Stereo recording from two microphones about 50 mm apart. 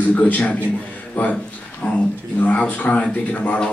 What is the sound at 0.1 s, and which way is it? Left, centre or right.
A man's voice, left.